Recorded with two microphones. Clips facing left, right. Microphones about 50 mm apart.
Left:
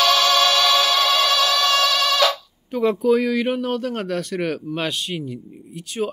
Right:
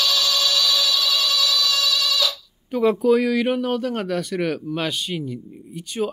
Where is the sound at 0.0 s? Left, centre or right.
Left.